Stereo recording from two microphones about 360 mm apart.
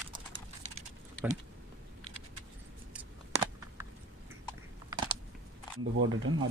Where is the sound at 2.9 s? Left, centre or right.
Centre.